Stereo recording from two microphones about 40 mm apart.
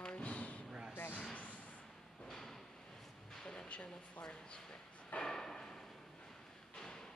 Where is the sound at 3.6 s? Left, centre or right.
Left.